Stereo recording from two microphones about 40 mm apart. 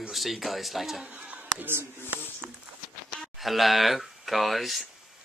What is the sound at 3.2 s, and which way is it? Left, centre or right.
Speech, centre.